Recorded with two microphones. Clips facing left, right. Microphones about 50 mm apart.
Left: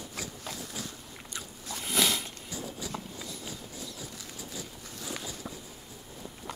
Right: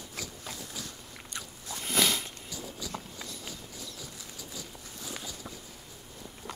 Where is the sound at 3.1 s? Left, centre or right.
Right.